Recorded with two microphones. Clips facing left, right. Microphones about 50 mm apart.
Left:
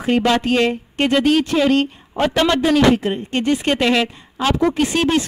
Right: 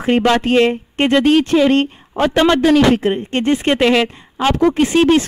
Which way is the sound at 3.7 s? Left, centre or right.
Centre.